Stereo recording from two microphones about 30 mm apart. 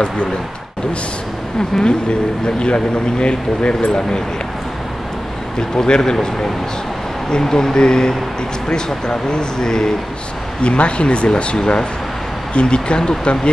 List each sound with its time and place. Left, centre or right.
1.8 s speech: left
5.6 s speech: left
7.2 s speech: left
10.6 s speech: left